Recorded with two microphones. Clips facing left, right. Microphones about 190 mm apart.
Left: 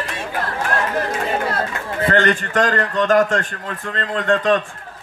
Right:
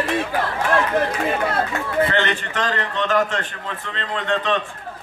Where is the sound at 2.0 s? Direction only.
45° left (ahead or behind).